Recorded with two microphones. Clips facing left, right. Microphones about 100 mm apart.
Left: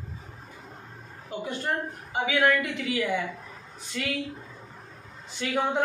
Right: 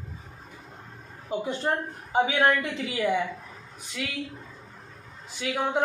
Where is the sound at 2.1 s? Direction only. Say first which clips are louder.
Right 2 dB; 30° right (ahead or behind).